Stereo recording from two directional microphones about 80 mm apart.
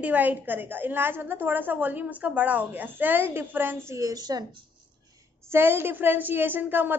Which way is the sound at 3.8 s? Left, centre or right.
Right.